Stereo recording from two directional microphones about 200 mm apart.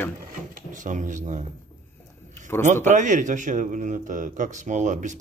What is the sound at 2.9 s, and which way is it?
A man's voice, 40° right (ahead or behind).